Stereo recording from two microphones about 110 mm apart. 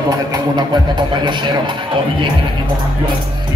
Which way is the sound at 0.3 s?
45° right (ahead or behind).